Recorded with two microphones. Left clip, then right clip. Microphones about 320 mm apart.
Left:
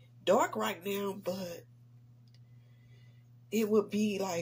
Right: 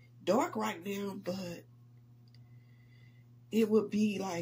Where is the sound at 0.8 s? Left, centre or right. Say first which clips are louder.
Left 3 dB; left.